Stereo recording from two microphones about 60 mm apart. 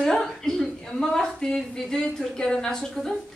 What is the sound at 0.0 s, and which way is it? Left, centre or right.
A woman's voice, centre.